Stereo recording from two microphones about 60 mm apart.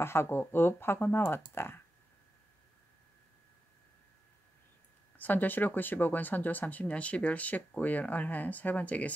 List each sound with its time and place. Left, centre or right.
0.0 s speech: left
5.1 s speech: left